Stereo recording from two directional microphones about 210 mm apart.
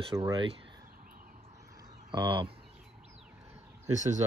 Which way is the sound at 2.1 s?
20° right (ahead or behind).